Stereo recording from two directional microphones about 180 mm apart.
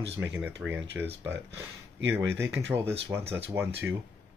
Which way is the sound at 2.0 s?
85° right.